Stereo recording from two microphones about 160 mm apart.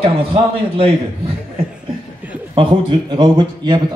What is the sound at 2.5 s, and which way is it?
Speech, 30° right (ahead or behind).